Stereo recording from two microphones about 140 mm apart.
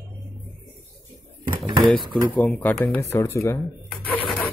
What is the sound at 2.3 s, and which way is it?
Speech, 10° left (ahead or behind).